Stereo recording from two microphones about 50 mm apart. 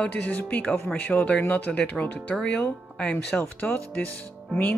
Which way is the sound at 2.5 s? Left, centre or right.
Centre.